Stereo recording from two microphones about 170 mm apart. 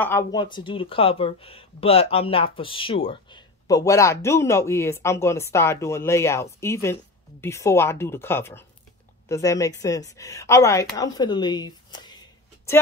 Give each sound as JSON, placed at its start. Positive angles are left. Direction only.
{"t": 0.3, "sound": "speech", "side_deg": 25}